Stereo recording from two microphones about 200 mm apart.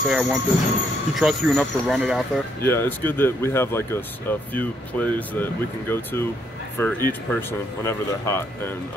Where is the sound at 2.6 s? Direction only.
10° left (ahead or behind).